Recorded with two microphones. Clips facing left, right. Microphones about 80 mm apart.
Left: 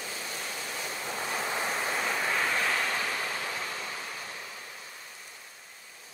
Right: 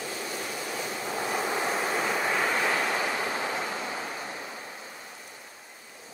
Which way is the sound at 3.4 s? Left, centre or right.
Right.